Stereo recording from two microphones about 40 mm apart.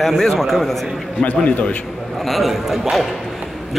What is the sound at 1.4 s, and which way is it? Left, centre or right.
Speech, left.